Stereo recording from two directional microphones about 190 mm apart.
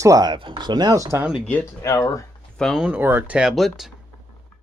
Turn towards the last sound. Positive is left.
turn(degrees=0)  # may be behind; listen again after turning